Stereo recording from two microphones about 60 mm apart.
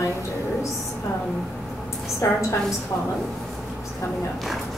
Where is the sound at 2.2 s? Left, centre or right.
Left.